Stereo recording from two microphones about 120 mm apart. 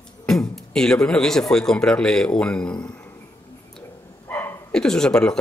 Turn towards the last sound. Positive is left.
turn(degrees=5)  # may be behind; listen again after turning